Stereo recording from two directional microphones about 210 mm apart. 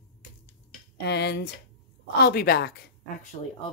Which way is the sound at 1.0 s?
55° left (ahead or behind).